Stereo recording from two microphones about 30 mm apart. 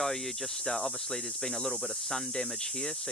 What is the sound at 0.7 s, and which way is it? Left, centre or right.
Speech, centre.